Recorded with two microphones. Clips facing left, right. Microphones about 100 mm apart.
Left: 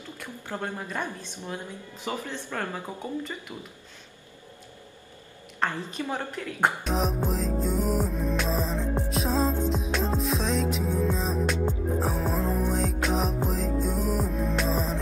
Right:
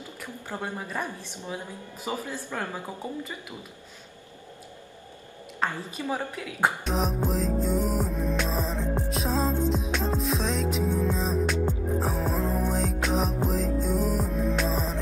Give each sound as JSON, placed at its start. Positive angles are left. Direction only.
{"t": 0.2, "sound": "speech", "side_deg": -10}
{"t": 5.6, "sound": "speech", "side_deg": -10}
{"t": 9.1, "sound": "music", "side_deg": 0}